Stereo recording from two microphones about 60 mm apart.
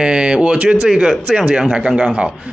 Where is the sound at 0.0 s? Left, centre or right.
Centre.